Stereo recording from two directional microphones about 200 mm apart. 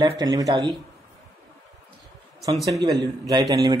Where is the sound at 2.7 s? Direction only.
20° right (ahead or behind).